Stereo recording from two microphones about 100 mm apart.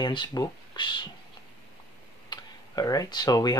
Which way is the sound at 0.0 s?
50° left (ahead or behind).